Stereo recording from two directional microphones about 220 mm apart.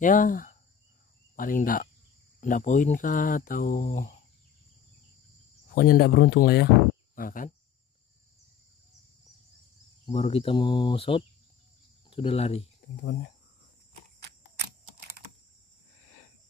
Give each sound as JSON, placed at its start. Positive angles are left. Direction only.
{"t": 0.0, "sound": "speech", "side_deg": 35}
{"t": 1.3, "sound": "cricket", "side_deg": 40}
{"t": 2.4, "sound": "speech", "side_deg": 35}
{"t": 5.8, "sound": "speech", "side_deg": 45}
{"t": 10.1, "sound": "speech", "side_deg": 25}
{"t": 13.0, "sound": "speech", "side_deg": 50}